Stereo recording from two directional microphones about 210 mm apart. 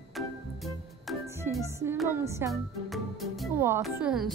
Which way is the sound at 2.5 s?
Centre (ahead or behind).